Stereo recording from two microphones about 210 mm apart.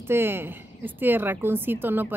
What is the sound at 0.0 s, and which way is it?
Speech, 10° right (ahead or behind).